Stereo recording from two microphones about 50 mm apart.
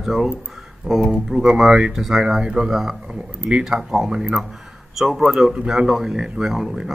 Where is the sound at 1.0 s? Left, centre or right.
Centre.